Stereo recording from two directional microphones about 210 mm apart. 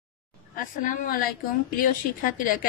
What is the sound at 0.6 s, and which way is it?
A woman's voice, 40° left (ahead or behind).